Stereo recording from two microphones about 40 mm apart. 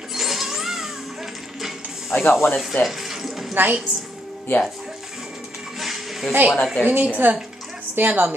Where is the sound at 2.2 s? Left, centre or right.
Left.